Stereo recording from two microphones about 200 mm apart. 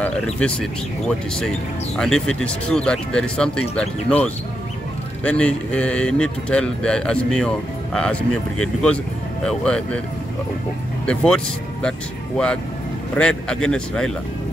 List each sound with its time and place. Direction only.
0.0 s speech: 5° left (ahead or behind)
11.1 s speech: 5° left (ahead or behind)
13.1 s speech: 5° left (ahead or behind)